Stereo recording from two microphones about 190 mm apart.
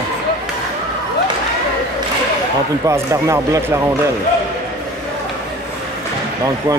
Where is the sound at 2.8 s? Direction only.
15° right (ahead or behind).